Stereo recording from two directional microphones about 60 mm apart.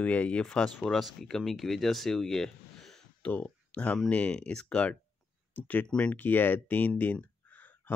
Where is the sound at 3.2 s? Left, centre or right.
Left.